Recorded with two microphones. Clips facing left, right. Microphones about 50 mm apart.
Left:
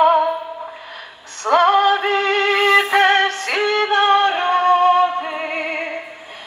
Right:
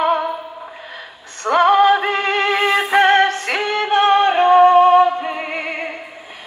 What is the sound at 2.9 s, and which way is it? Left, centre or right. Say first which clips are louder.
Music: right 2 dB; right.